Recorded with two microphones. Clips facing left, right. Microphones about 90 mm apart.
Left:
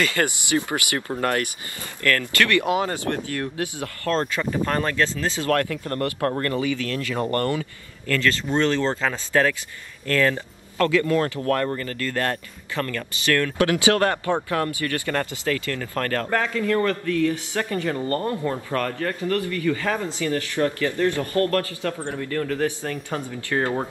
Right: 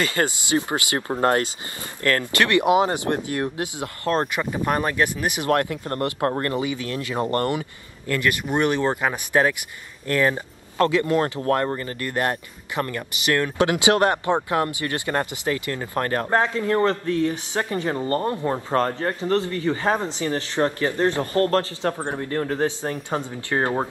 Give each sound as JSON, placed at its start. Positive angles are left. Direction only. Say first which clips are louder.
{"t": 0.0, "sound": "speech", "louder": "even", "side_deg": -25}